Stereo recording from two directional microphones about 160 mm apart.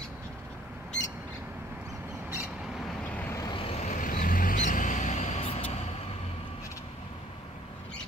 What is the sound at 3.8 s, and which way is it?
Vehicle, 50° left (ahead or behind).